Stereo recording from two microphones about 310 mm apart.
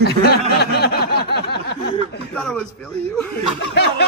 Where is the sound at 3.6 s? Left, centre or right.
Left.